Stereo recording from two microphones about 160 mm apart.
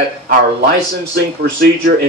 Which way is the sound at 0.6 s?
75° right (ahead or behind).